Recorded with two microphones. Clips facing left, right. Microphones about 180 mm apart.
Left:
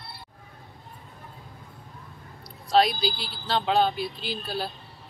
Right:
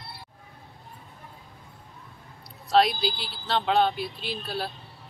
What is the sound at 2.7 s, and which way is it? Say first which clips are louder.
Speech: even; centre (ahead or behind).